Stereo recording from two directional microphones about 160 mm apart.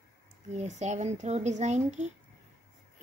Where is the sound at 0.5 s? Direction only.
45° right (ahead or behind).